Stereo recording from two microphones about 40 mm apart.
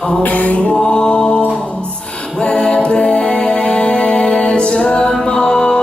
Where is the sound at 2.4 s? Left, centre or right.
Left.